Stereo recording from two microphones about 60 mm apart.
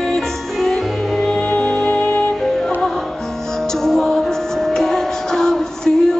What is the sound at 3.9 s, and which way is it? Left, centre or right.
Music, centre.